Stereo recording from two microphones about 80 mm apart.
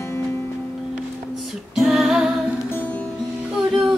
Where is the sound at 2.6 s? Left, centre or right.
Left.